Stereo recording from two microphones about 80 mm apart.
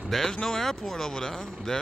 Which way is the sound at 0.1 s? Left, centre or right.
Centre.